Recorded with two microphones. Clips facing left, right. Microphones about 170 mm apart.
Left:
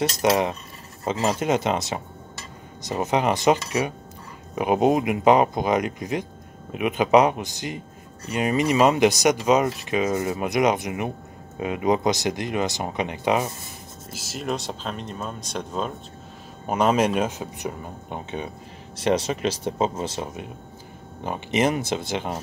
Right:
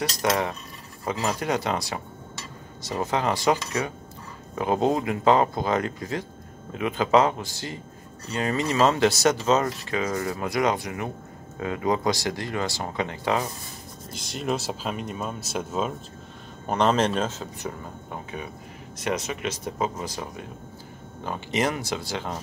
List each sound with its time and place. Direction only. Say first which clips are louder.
0.2 s speech: left 3 dB; 20° left (ahead or behind)
14.1 s speech: right 1 dB; 5° left (ahead or behind)
16.6 s speech: left 2 dB; 10° left (ahead or behind)